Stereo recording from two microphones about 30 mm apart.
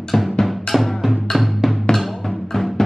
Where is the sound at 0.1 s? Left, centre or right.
Left.